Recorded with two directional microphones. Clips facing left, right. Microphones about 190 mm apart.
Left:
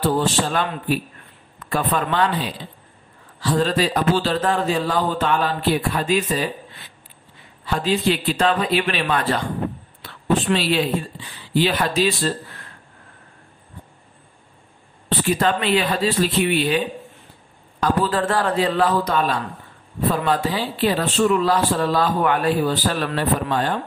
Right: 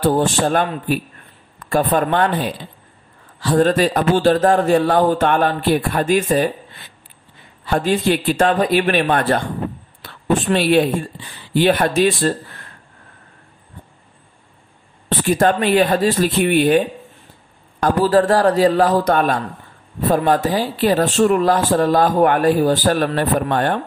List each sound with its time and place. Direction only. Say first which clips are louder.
0.0 s speech: right 4 dB; 50° right (ahead or behind)
7.6 s speech: right 3 dB; 50° right (ahead or behind)
15.0 s a man's voice: right 4 dB; 50° right (ahead or behind)